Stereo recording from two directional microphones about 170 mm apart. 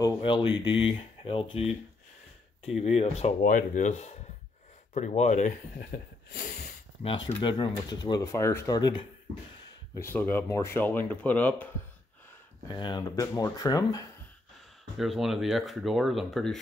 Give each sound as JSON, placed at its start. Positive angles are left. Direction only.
{"t": 0.0, "sound": "speech", "side_deg": 30}
{"t": 2.8, "sound": "speech", "side_deg": 40}
{"t": 3.4, "sound": "speech", "side_deg": 50}
{"t": 7.0, "sound": "speech", "side_deg": 35}
{"t": 9.9, "sound": "speech", "side_deg": 10}
{"t": 12.7, "sound": "speech", "side_deg": 25}
{"t": 15.0, "sound": "speech", "side_deg": 0}